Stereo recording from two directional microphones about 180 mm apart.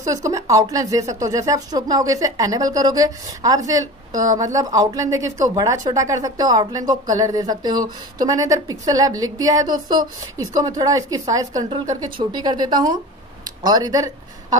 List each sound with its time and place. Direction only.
0.0 s speech: 20° right (ahead or behind)